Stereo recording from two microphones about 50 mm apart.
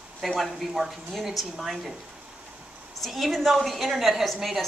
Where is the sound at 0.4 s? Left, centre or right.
Centre.